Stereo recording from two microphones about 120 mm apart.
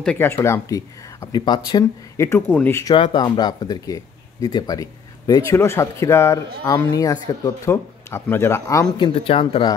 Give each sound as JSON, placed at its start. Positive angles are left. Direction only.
{"t": 0.2, "sound": "speech", "side_deg": 20}
{"t": 2.9, "sound": "speech", "side_deg": 45}
{"t": 8.9, "sound": "speech", "side_deg": 45}